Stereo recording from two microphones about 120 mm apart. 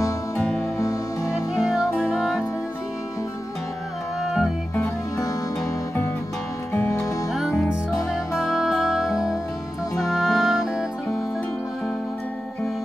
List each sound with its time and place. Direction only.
0.4 s music: 5° left (ahead or behind)
4.2 s music: centre (ahead or behind)
4.8 s music: 30° left (ahead or behind)
7.3 s music: centre (ahead or behind)